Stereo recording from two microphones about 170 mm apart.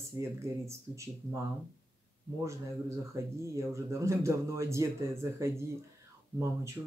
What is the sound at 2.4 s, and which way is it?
Speech, 15° right (ahead or behind).